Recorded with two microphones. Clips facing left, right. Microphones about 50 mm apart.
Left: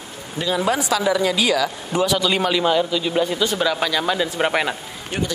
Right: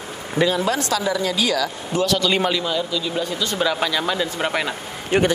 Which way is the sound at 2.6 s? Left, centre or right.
Left.